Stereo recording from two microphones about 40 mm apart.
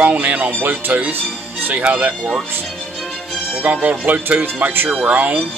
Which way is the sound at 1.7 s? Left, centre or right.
Right.